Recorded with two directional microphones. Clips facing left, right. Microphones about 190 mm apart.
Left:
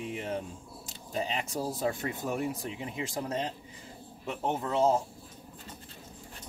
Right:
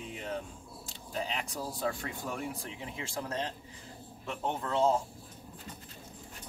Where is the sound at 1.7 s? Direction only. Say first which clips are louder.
Left 3 dB; 25° left (ahead or behind).